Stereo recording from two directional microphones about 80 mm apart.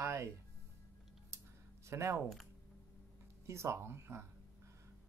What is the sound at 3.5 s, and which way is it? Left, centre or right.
Speech, right.